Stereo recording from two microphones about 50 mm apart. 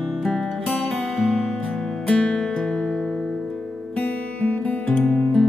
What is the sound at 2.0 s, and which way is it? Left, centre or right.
Music, left.